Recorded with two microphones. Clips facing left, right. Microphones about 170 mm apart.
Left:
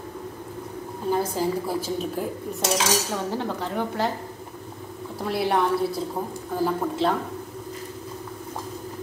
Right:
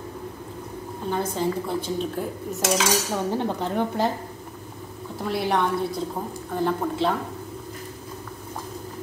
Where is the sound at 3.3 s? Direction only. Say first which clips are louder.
Right 2 dB; 20° right (ahead or behind).